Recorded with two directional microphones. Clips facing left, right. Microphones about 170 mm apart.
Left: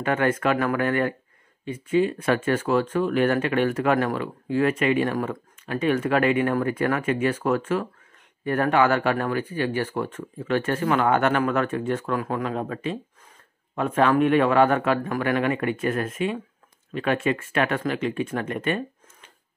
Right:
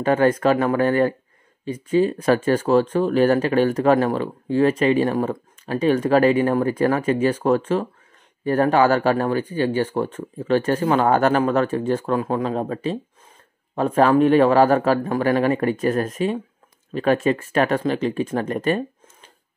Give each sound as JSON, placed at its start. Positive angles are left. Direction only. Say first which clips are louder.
{"t": 0.0, "sound": "speech", "louder": "right 5 dB", "side_deg": -35}